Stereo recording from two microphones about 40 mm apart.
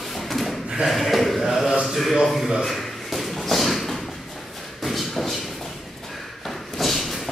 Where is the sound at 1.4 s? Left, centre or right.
Centre.